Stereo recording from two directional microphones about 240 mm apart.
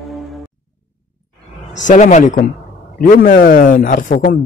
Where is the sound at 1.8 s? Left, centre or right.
Left.